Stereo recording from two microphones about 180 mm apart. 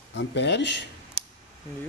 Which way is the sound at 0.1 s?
85° left.